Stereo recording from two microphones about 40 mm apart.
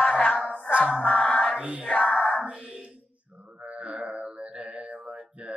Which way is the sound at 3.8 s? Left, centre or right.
Right.